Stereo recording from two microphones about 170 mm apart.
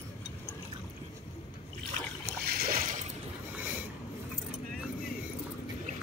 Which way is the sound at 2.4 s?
65° right (ahead or behind).